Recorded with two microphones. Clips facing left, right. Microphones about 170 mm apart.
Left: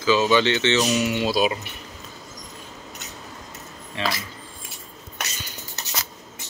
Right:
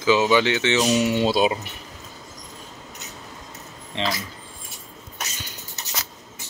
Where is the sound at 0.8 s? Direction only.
25° right (ahead or behind).